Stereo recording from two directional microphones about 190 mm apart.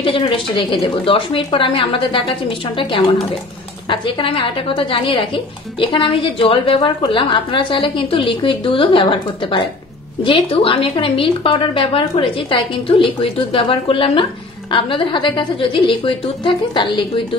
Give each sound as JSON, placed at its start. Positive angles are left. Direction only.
{"t": 0.0, "sound": "a woman's voice", "side_deg": 30}
{"t": 3.9, "sound": "a woman's voice", "side_deg": 25}